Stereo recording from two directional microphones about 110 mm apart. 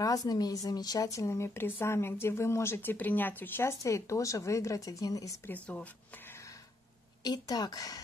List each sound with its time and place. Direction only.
0.0 s speech: 35° left (ahead or behind)
5.5 s speech: 15° left (ahead or behind)
7.2 s speech: 35° left (ahead or behind)